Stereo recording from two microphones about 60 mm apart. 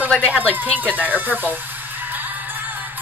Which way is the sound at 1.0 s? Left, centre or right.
Right.